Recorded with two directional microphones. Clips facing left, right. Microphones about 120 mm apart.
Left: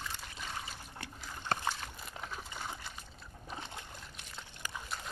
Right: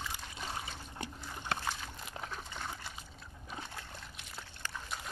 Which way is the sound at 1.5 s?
45° left (ahead or behind).